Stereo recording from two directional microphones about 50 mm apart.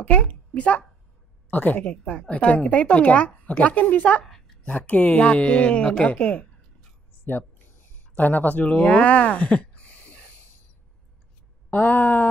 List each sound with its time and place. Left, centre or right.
0.0 s a child's voice: left
1.9 s a woman's voice: left
7.2 s a sound: left
11.7 s speech: left